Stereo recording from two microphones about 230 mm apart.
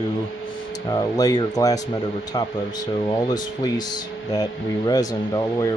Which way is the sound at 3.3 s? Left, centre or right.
Centre.